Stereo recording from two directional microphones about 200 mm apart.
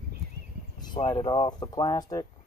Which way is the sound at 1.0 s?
25° left (ahead or behind).